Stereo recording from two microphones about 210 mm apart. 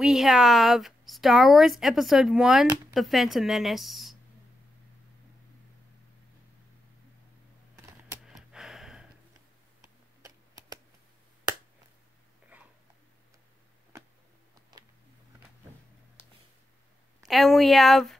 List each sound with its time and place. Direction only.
0.0 s a woman's voice: centre (ahead or behind)
7.7 s computer keyboard: 15° right (ahead or behind)
8.3 s gasp: 5° right (ahead or behind)
10.2 s typing: 15° right (ahead or behind)
12.5 s a sound: 5° right (ahead or behind)
17.2 s a woman's voice: centre (ahead or behind)